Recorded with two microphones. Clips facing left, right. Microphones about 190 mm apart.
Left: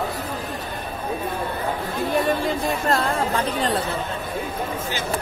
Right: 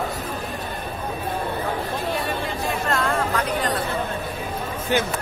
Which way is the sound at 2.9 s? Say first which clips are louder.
Even; 35° left (ahead or behind).